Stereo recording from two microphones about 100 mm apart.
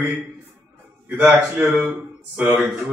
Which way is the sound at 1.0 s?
15° right (ahead or behind).